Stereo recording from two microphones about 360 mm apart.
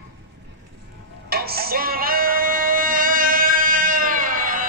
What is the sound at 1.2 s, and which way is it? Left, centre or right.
Music, right.